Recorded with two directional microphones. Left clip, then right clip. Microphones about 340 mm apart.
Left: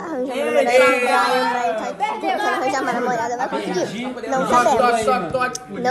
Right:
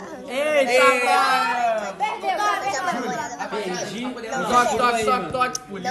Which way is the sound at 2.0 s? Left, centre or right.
Right.